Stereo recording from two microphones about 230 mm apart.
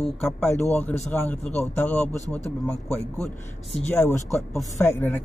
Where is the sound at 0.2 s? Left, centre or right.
Centre.